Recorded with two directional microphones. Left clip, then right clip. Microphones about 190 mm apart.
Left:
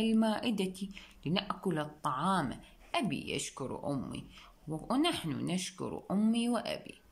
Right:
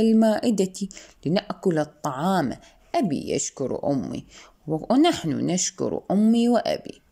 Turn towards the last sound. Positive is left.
turn(degrees=-35)  # may be behind; listen again after turning